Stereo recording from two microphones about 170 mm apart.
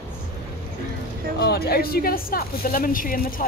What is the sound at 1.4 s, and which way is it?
Speech, 70° left (ahead or behind).